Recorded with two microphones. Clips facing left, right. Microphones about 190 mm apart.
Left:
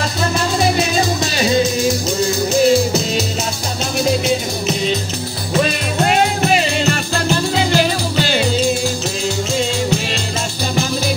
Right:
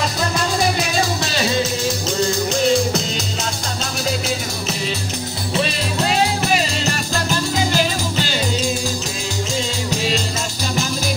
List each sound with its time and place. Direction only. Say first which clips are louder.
2.5 s music: left 6 dB; 5° left (ahead or behind)
7.7 s music: left 4 dB; 50° left (ahead or behind)